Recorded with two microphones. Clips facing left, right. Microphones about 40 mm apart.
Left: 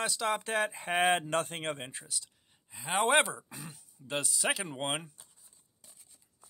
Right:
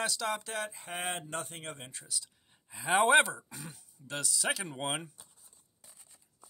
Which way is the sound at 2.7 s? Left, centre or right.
Centre.